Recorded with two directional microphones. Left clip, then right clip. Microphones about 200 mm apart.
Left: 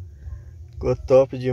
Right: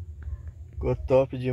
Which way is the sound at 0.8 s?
15° left (ahead or behind).